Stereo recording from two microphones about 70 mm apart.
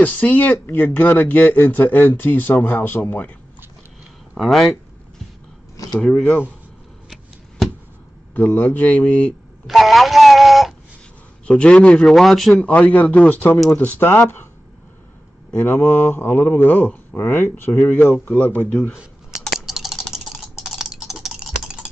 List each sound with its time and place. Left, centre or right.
0.0 s speech: left
4.4 s speech: centre
5.9 s speech: centre
7.1 s shuffling cards: centre
8.4 s speech: left
9.7 s a sound: centre
11.4 s speech: centre
12.5 s speech: centre
15.5 s speech: left
19.5 s typing: centre